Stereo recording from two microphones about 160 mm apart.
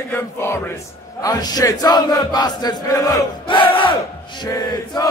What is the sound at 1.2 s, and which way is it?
Chant, 25° left (ahead or behind).